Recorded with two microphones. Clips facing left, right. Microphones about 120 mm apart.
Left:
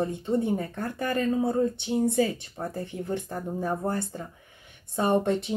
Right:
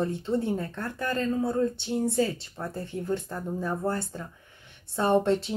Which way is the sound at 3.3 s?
40° left (ahead or behind).